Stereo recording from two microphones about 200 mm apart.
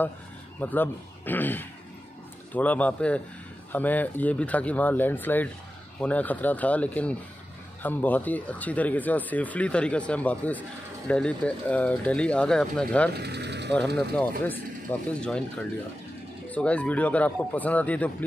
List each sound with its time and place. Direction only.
0.6 s speech: 10° left (ahead or behind)
13.1 s speech: 55° right (ahead or behind)
13.7 s speech: 5° left (ahead or behind)
16.4 s speech: 5° left (ahead or behind)